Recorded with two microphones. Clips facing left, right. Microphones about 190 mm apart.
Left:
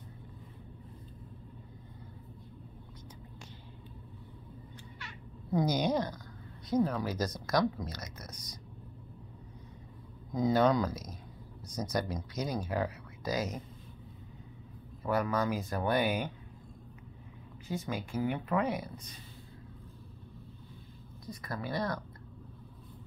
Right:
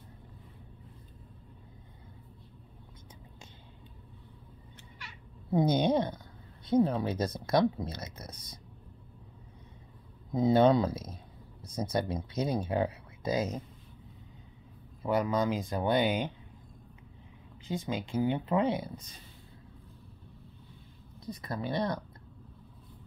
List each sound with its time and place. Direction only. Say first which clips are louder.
5.5 s speech: right 3 dB; 25° right (ahead or behind)
10.3 s speech: right 3 dB; 25° right (ahead or behind)
15.0 s speech: right 2 dB; 20° right (ahead or behind)
17.6 s speech: right 2 dB; 25° right (ahead or behind)
21.3 s speech: right 3 dB; 20° right (ahead or behind)